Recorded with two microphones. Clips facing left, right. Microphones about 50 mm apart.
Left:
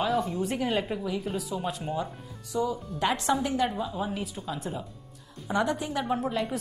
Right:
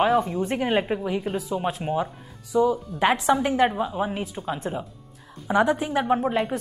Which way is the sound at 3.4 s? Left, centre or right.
Right.